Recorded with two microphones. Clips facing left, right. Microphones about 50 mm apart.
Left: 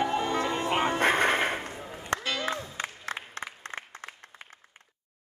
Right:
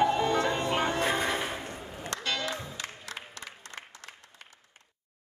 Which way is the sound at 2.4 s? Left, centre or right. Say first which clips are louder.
Left 3 dB; left.